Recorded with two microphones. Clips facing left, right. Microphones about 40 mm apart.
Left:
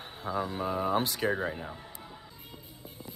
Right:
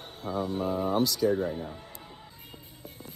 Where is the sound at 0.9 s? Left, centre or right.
Left.